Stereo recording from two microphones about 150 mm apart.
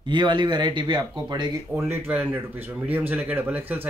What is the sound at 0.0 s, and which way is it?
Speech, 30° right (ahead or behind).